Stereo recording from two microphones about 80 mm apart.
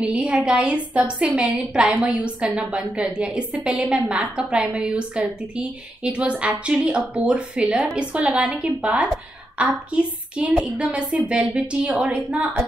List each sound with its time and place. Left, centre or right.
0.0 s a woman's voice: centre